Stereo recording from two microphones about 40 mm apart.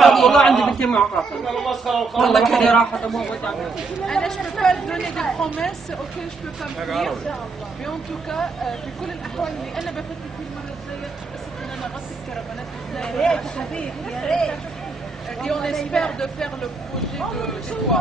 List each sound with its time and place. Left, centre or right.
0.0 s a sound: centre
0.5 s speech: centre
0.7 s speech: left
1.4 s speech: centre
2.6 s speech: centre
13.0 s speech: centre